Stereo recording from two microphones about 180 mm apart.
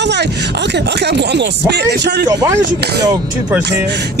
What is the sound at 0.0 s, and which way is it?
Speech, 70° right (ahead or behind).